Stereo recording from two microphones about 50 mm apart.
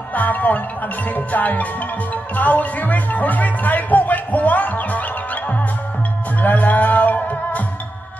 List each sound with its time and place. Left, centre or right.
0.1 s music: left
2.3 s speech: left
6.4 s music: left